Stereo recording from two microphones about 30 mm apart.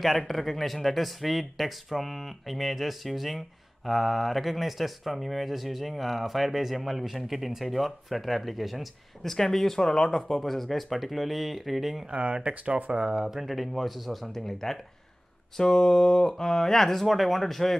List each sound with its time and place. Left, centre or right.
0.3 s speech: centre
9.2 s speech: centre
9.8 s speech: left
10.2 s speech: centre
12.1 s speech: right
13.0 s speech: right
13.3 s speech: centre
14.2 s speech: centre